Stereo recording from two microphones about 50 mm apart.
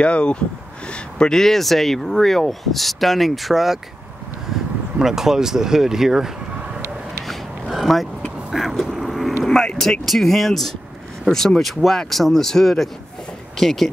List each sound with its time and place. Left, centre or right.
0.0 s speech: left; by 3.8 s centre
4.9 s speech: centre
7.2 s a sound: centre
8.5 s vehicle: centre
9.4 s vehicle: centre
10.0 s speech: centre